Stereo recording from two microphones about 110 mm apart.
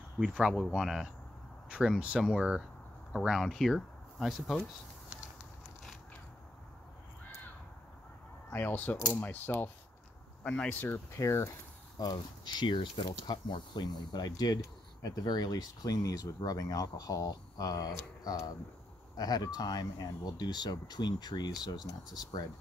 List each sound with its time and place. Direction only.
0.2 s speech: 10° right (ahead or behind)
8.5 s speech: 15° left (ahead or behind)
11.1 s speech: 25° left (ahead or behind)
12.0 s speech: 40° left (ahead or behind)